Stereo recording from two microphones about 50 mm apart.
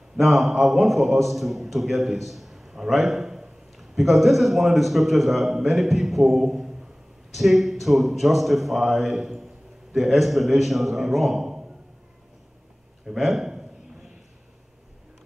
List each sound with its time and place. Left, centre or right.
0.2 s a man's voice: centre
13.0 s a man's voice: centre